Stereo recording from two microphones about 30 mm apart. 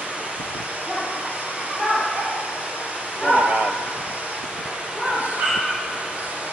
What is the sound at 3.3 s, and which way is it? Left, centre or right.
Bow-wow, right.